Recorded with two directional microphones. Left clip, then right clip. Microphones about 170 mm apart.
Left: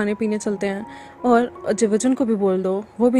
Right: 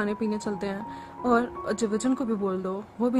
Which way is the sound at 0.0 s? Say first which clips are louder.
Left 6 dB; 25° left (ahead or behind).